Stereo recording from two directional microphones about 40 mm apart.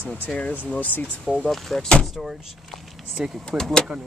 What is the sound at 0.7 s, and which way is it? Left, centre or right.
Speech, left.